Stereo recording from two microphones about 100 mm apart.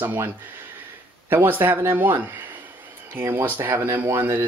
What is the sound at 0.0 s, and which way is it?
Speech, 20° right (ahead or behind).